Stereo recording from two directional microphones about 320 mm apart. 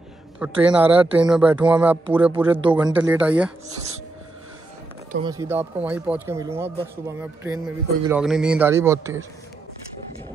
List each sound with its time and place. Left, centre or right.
0.4 s speech: centre
3.6 s speech: centre
5.2 s speech: centre